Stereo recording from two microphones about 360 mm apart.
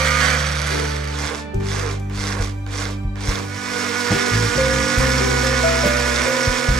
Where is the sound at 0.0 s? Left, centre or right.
Centre.